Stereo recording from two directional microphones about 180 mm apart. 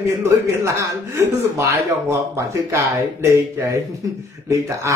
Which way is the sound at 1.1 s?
15° right (ahead or behind).